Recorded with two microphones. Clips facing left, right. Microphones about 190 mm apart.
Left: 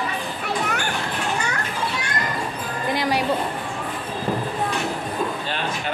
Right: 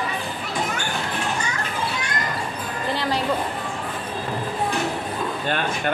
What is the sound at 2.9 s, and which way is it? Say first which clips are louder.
Music: left 2 dB; 10° left (ahead or behind).